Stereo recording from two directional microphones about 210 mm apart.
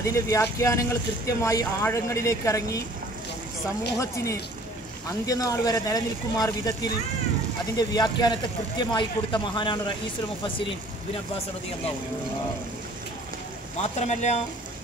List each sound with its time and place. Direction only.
0.0 s speech: 15° left (ahead or behind)
4.0 s speech: 15° left (ahead or behind)
13.7 s speech: 35° left (ahead or behind)